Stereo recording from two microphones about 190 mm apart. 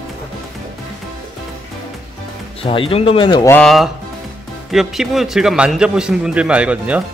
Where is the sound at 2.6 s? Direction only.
30° left (ahead or behind).